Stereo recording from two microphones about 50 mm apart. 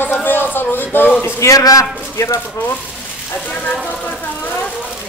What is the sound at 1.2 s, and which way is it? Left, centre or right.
A man's voice, left.